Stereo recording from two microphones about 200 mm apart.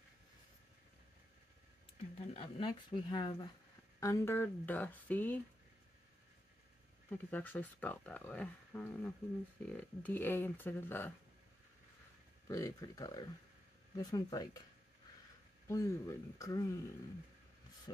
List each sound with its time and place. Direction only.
2.1 s speech: 30° left (ahead or behind); by 5.4 s 10° left (ahead or behind)
7.1 s speech: 10° left (ahead or behind)
12.4 s speech: 15° left (ahead or behind)
15.7 s speech: 15° left (ahead or behind)
17.9 s speech: 20° left (ahead or behind)